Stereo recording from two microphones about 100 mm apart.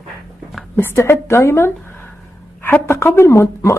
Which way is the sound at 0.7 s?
25° left (ahead or behind).